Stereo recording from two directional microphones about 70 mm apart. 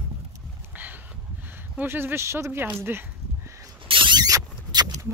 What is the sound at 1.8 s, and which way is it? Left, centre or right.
Speech, right.